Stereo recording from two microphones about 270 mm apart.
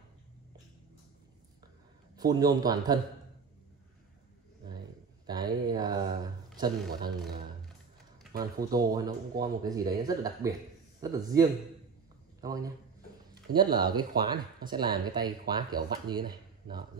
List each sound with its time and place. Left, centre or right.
2.1 s speech: centre
5.2 s a sound: centre
8.6 s speech: centre